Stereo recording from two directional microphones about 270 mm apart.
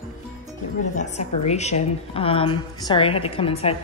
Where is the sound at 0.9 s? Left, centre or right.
Left.